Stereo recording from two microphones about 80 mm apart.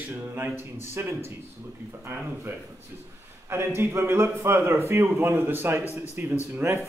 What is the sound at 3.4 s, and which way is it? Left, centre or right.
A man's voice, right.